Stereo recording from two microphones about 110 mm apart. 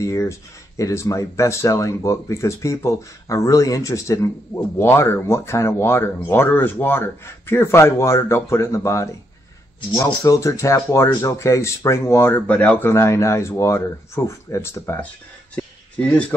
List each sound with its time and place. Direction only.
0.0 s speech: 30° left (ahead or behind)
10.2 s speech: 30° left (ahead or behind)
15.5 s a sound: 10° left (ahead or behind)